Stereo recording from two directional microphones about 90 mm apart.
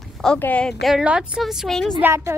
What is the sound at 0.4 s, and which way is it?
Speech, 15° left (ahead or behind).